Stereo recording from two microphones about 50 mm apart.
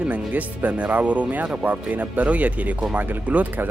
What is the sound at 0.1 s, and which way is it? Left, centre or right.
Speech, right.